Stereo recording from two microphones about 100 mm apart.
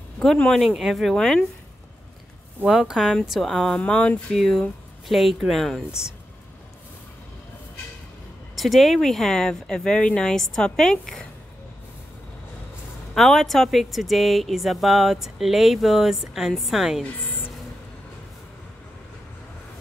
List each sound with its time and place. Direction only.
0.2 s speech: 5° left (ahead or behind)
2.6 s speech: 5° right (ahead or behind)
8.5 s speech: centre (ahead or behind)
13.1 s speech: centre (ahead or behind)